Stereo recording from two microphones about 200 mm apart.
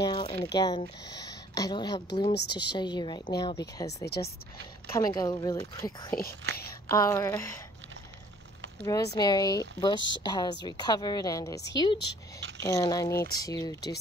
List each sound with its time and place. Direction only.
0.0 s speech: 20° left (ahead or behind)
2.3 s speech: 55° left (ahead or behind)
2.7 s a woman's voice: 20° left (ahead or behind)
4.9 s a woman's voice: 20° left (ahead or behind)
8.8 s a woman's voice: 15° left (ahead or behind)